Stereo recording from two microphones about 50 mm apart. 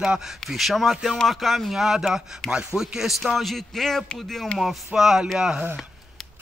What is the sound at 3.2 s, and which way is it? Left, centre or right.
Speech, centre.